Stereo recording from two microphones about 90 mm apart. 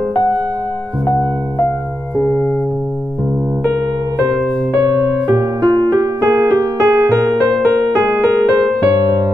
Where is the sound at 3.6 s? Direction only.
35° right (ahead or behind).